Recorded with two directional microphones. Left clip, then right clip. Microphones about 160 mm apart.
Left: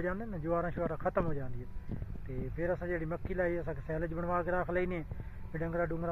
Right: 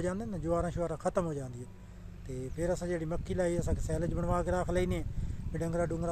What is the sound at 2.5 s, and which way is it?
Speech, 25° right (ahead or behind).